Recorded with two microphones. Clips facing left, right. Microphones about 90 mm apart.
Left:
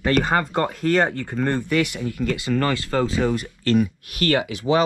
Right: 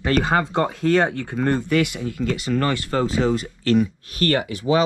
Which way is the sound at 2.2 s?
20° right (ahead or behind).